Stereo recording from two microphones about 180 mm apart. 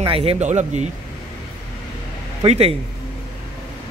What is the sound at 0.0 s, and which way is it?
Speech, 30° right (ahead or behind).